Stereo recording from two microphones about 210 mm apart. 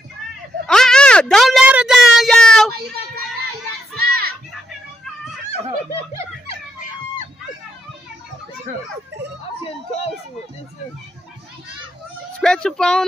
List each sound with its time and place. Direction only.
0.7 s a sound: 5° left (ahead or behind)
4.1 s crowd: 45° right (ahead or behind)
12.4 s speech: 5° left (ahead or behind)